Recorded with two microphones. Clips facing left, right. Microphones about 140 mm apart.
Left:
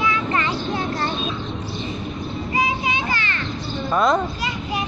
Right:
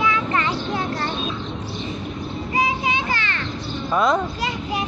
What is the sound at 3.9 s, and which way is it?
Speech, 5° right (ahead or behind).